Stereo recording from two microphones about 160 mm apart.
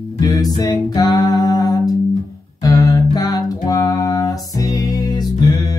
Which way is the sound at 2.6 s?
20° left (ahead or behind).